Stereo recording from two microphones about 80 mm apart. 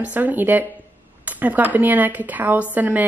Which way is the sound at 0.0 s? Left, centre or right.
Right.